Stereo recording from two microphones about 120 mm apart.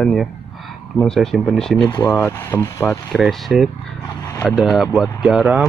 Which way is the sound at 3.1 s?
Centre (ahead or behind).